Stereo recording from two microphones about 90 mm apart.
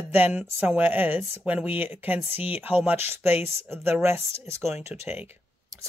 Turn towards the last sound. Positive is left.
turn(degrees=-20)  # may be behind; listen again after turning